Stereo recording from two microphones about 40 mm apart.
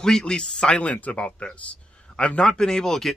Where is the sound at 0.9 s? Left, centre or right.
Left.